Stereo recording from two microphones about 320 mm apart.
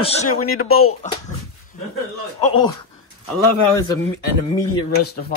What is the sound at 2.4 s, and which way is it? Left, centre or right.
Speech, centre.